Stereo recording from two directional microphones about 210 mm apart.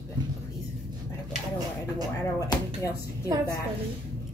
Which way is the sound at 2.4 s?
15° left (ahead or behind).